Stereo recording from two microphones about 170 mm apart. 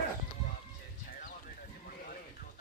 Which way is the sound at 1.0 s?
50° left (ahead or behind).